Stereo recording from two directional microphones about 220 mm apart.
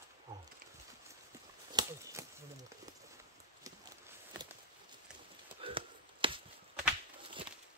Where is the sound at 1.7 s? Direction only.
15° right (ahead or behind).